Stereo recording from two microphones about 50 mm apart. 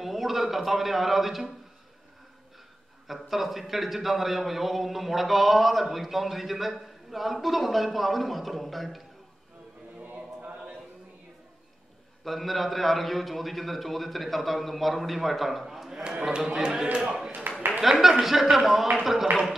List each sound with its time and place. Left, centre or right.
0.0 s a man's voice: centre
3.1 s a man's voice: centre
10.0 s chant: right
12.3 s a man's voice: centre
16.0 s a man's voice: right